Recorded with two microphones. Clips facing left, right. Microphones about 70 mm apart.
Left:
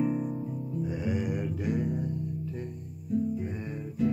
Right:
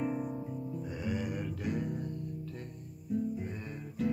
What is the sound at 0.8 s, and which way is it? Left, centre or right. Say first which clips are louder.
Music: left 6 dB; centre.